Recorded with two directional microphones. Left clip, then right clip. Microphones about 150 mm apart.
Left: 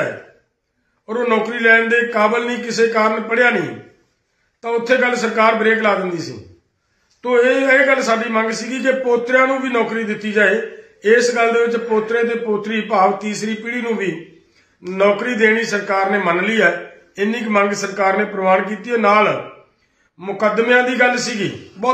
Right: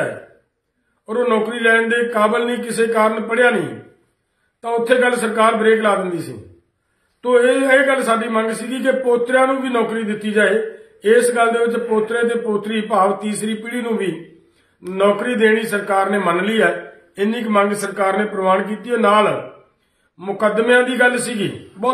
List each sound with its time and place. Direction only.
1.0 s a man's voice: 15° right (ahead or behind)
4.6 s a man's voice: 15° right (ahead or behind)